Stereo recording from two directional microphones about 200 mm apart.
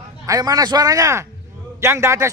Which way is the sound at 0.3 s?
20° right (ahead or behind).